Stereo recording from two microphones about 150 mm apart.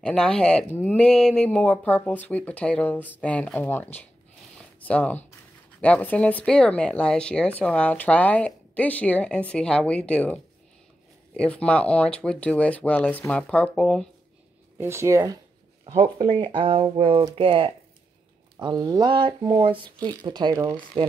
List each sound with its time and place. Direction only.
0.0 s speech: 5° left (ahead or behind)
4.6 s a sound: 10° left (ahead or behind)
5.8 s speech: 10° left (ahead or behind)
14.8 s speech: 15° right (ahead or behind)
16.0 s speech: 35° right (ahead or behind)